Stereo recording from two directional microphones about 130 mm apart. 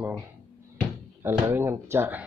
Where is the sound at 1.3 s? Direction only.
15° right (ahead or behind).